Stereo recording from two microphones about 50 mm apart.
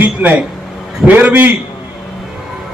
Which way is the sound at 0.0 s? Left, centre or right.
Right.